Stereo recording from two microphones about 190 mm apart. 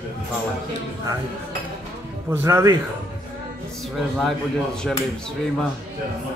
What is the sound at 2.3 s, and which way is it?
Speech, 15° right (ahead or behind).